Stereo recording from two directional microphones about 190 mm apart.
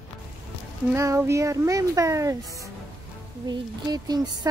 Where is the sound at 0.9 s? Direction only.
15° right (ahead or behind).